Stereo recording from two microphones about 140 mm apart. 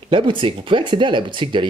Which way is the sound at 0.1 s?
35° right (ahead or behind).